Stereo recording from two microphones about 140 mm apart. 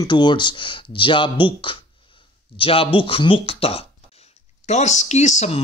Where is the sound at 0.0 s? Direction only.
35° left (ahead or behind).